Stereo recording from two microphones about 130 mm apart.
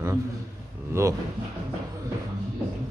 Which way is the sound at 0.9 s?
20° right (ahead or behind).